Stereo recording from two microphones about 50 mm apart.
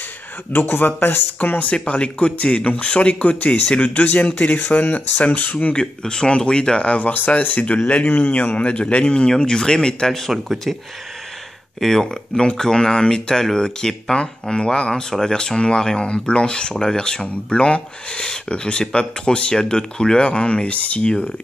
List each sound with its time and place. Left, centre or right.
0.5 s speech: left
1.6 s speech: left
5.8 s speech: centre
11.8 s speech: centre